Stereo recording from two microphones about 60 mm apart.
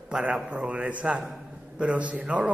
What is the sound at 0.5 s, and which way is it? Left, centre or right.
A man's voice, right.